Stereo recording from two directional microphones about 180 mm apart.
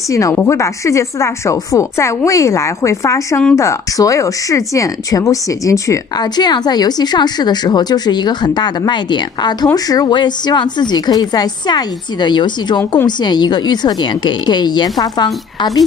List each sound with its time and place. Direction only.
0.1 s a woman's voice: 15° left (ahead or behind)